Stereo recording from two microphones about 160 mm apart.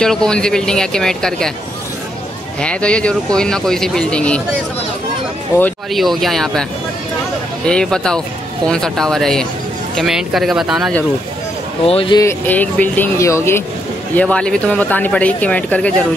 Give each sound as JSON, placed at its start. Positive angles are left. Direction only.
{"t": 0.0, "sound": "speech", "side_deg": 5}
{"t": 2.6, "sound": "speech", "side_deg": 5}
{"t": 5.5, "sound": "speech", "side_deg": 20}
{"t": 5.9, "sound": "speech", "side_deg": 0}
{"t": 7.6, "sound": "speech", "side_deg": 5}
{"t": 11.8, "sound": "speech", "side_deg": 35}
{"t": 12.2, "sound": "speech", "side_deg": 15}